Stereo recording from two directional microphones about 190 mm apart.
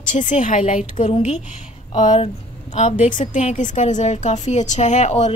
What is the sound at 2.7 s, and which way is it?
A woman's voice, 40° left (ahead or behind).